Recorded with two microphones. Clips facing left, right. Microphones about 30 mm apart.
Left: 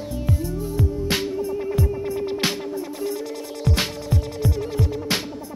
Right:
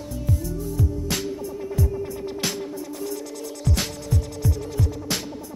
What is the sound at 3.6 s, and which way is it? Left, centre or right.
Heart sounds, left.